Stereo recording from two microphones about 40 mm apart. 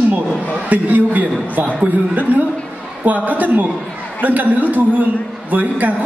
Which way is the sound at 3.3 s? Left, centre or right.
Right.